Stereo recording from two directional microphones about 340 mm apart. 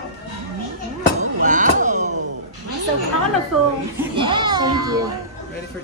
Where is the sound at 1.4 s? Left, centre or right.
Right.